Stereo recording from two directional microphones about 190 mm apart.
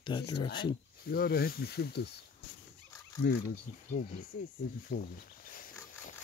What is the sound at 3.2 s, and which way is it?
Speech, 55° left (ahead or behind).